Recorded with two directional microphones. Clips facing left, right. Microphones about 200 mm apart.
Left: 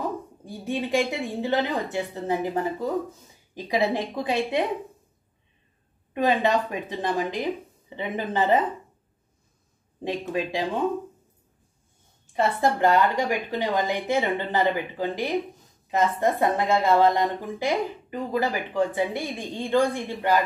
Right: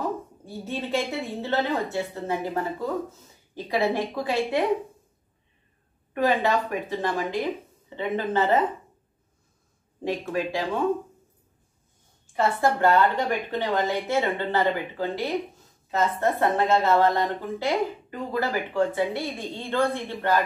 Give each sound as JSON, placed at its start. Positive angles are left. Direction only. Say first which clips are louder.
{"t": 0.5, "sound": "a woman's voice", "louder": "left 2 dB", "side_deg": 15}
{"t": 6.1, "sound": "a woman's voice", "louder": "left 1 dB", "side_deg": 20}
{"t": 10.0, "sound": "a woman's voice", "louder": "even", "side_deg": 20}
{"t": 12.3, "sound": "a woman's voice", "louder": "even", "side_deg": 20}